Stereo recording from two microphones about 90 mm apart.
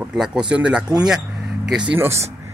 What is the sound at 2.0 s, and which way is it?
Speech, 30° right (ahead or behind).